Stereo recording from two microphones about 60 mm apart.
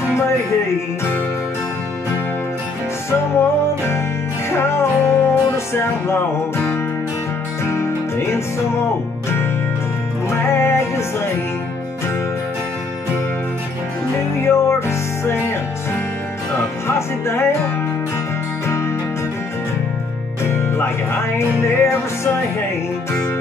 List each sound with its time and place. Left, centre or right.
3.1 s music: left
10.3 s music: left
14.4 s music: left
16.8 s music: left
20.4 s music: left